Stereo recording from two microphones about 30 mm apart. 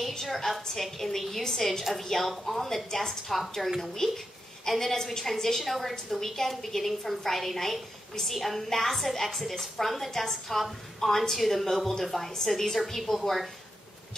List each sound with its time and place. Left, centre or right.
0.1 s a woman's voice: centre
2.9 s a woman's voice: centre
3.6 s a woman's voice: centre
4.0 s a woman's voice: centre